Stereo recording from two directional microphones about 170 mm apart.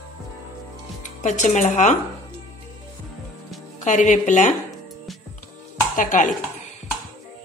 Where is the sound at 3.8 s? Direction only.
45° left (ahead or behind).